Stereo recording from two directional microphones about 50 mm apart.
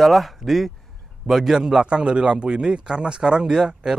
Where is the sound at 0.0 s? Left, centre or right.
Centre.